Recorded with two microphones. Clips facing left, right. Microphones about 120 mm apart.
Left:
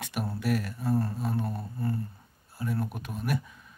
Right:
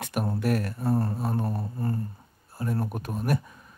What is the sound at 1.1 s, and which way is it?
Speech, 45° right (ahead or behind).